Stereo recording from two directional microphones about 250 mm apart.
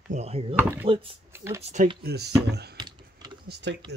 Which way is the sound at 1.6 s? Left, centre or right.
Right.